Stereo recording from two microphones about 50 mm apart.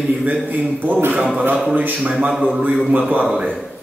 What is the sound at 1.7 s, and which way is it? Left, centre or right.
Speech, right.